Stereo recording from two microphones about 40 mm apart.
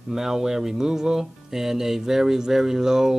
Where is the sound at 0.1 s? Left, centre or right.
Centre.